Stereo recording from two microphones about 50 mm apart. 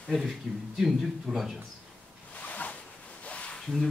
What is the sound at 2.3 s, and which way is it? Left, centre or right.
Zipper, left.